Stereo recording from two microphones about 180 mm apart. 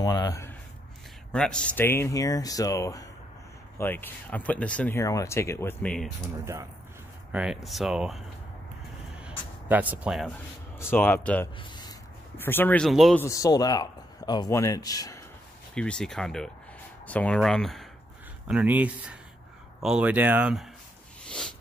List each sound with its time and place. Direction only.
0.0 s speech: 20° left (ahead or behind)
1.3 s speech: 5° left (ahead or behind)
6.4 s speech: 15° right (ahead or behind)
7.3 s speech: centre (ahead or behind)
9.2 s a sound: 10° right (ahead or behind)
10.8 s speech: 10° left (ahead or behind)
13.2 s speech: 20° left (ahead or behind)
15.7 s speech: 5° left (ahead or behind)